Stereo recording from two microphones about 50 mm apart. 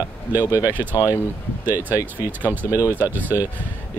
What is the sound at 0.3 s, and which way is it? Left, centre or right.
Speech, right.